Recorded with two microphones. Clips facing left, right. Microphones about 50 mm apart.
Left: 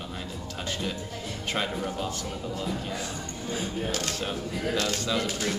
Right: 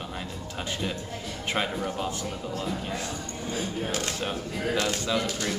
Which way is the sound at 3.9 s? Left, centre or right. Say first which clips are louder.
Even; right.